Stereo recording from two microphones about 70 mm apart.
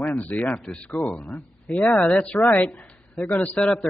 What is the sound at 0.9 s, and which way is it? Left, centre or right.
A man's voice, left.